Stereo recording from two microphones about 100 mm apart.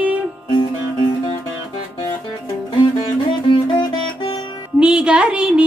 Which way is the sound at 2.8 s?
55° left (ahead or behind).